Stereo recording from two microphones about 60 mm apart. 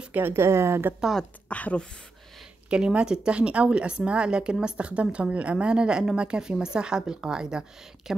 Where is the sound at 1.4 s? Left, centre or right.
Left.